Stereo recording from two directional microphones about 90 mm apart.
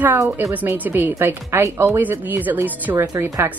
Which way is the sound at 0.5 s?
20° right (ahead or behind).